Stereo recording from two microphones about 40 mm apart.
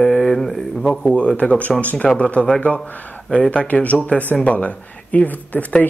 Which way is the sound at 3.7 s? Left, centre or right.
Left.